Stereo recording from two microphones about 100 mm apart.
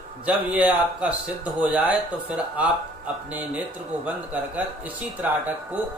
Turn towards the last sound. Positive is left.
turn(degrees=-15)  # may be behind; listen again after turning